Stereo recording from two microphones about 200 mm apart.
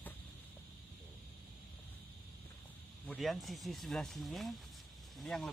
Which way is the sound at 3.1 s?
Centre (ahead or behind).